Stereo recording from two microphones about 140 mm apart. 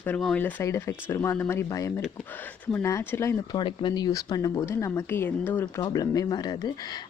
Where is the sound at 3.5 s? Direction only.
35° left (ahead or behind).